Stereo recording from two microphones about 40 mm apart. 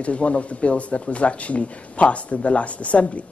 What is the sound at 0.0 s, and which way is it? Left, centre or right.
A man's voice, left.